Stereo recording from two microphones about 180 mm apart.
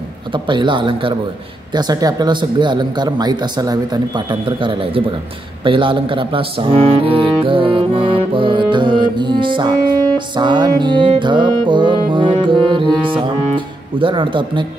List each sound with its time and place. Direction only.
0.3 s speech: 25° right (ahead or behind)